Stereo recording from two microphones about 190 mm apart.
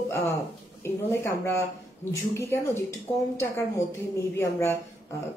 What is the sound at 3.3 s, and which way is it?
A woman's voice, 15° left (ahead or behind).